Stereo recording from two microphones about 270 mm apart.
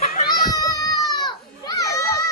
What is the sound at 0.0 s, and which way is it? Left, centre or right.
Cat, left.